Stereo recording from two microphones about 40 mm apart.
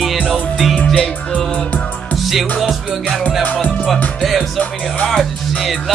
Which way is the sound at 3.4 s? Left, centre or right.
Left.